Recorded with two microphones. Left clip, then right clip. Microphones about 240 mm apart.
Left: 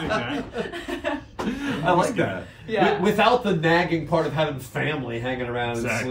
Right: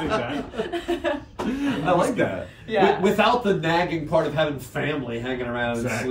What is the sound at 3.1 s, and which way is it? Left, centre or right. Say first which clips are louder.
Speech: left 1 dB; left.